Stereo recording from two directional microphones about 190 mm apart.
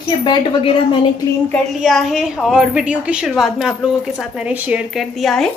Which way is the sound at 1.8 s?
Centre (ahead or behind).